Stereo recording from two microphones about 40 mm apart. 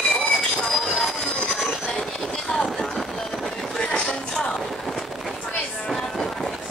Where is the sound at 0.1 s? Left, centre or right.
Centre.